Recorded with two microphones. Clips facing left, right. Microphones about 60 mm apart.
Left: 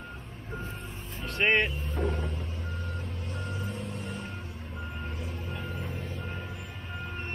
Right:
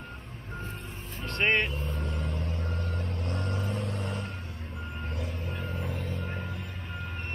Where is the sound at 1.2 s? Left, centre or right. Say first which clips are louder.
Left 1 dB; centre.